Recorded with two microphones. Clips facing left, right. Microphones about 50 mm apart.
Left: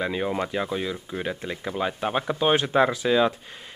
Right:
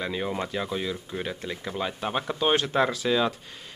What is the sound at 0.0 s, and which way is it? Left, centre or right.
Speech, centre.